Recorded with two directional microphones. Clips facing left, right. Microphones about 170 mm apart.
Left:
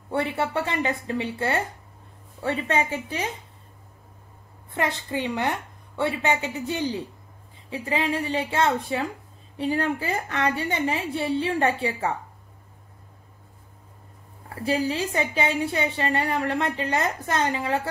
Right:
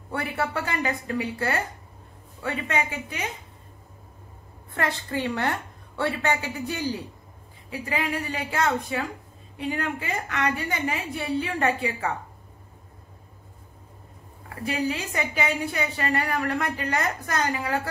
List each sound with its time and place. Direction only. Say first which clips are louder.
0.1 s a woman's voice: left 3 dB; 25° left (ahead or behind)
4.7 s a woman's voice: left 1 dB; 20° left (ahead or behind)
14.5 s a woman's voice: left 3 dB; 30° left (ahead or behind)